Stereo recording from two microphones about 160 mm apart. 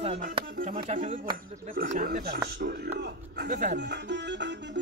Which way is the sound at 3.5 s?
75° right (ahead or behind).